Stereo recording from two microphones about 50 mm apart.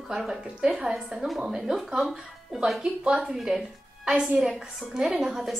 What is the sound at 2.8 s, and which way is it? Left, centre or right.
Speech, centre.